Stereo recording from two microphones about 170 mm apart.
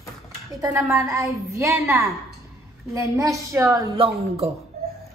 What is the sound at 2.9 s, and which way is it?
A woman's voice, 20° right (ahead or behind).